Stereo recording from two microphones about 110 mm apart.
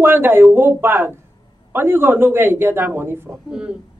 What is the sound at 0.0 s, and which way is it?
A woman's voice, 20° right (ahead or behind).